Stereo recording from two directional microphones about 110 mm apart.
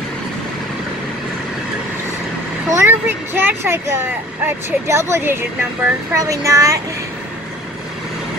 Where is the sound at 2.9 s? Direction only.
20° right (ahead or behind).